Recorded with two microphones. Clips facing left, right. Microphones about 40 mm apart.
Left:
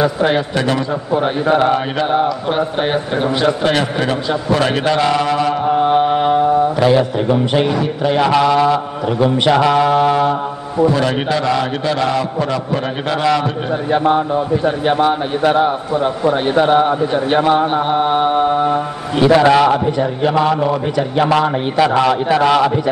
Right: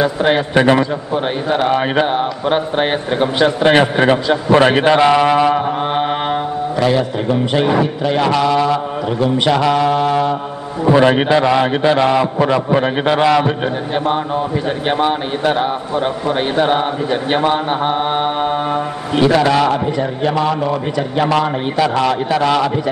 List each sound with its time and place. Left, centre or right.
0.0 s a man's voice: centre
1.5 s speech: centre
2.5 s a man's voice: right
6.8 s a man's voice: centre
10.9 s a man's voice: right
14.9 s speech: centre
16.6 s a man's voice: centre
17.4 s a man's voice: centre
19.2 s a man's voice: centre